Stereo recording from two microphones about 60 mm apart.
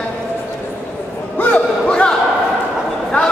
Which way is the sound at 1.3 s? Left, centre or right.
Centre.